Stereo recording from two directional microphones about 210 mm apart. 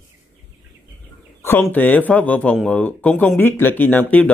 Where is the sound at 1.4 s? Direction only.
10° left (ahead or behind).